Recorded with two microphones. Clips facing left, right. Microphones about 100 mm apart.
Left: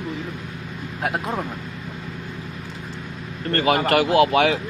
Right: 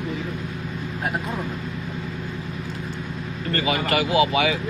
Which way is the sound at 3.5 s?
60° left (ahead or behind).